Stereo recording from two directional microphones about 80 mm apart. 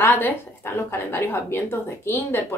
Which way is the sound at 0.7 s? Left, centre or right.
Left.